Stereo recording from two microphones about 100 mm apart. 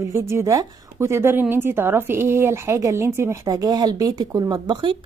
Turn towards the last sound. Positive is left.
turn(degrees=-50)  # may be behind; listen again after turning